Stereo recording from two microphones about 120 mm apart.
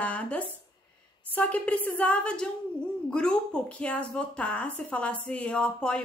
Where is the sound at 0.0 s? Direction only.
10° left (ahead or behind).